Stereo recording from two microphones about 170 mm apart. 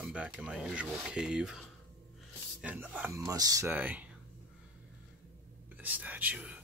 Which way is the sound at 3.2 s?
20° right (ahead or behind).